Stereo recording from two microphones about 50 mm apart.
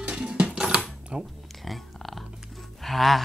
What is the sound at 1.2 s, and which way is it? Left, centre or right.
Music, centre.